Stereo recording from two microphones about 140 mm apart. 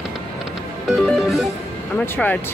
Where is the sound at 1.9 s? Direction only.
15° left (ahead or behind).